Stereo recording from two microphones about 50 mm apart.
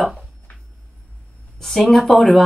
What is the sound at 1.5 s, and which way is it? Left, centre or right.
Speech, centre.